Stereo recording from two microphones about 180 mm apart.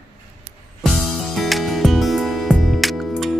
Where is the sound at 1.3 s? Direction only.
Centre (ahead or behind).